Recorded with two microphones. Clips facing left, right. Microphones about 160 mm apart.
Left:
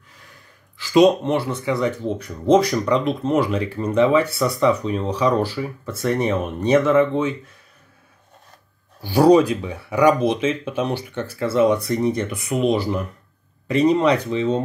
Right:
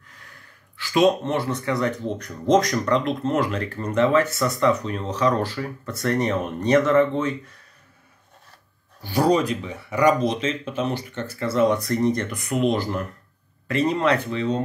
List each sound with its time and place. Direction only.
0.9 s speech: 15° left (ahead or behind)
9.2 s speech: 10° left (ahead or behind)
11.5 s speech: 5° left (ahead or behind)